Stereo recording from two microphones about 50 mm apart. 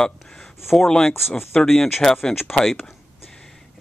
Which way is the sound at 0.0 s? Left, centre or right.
Centre.